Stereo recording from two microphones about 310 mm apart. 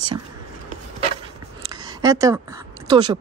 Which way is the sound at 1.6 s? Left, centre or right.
Centre.